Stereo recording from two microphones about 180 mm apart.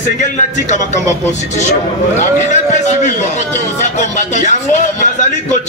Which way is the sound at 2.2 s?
40° left (ahead or behind).